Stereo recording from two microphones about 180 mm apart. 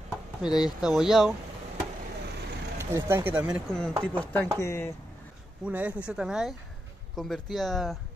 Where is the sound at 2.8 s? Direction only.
15° right (ahead or behind).